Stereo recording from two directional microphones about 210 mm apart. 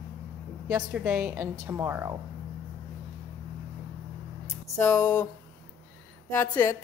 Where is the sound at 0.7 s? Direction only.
10° right (ahead or behind).